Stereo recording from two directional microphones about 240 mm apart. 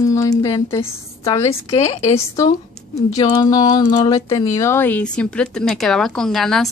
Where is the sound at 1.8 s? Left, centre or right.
Left.